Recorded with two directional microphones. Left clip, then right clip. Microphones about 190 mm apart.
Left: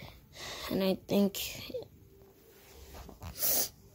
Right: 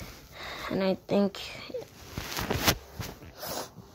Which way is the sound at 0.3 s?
10° left (ahead or behind).